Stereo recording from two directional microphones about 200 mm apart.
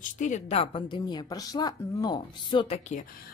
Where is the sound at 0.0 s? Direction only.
40° left (ahead or behind).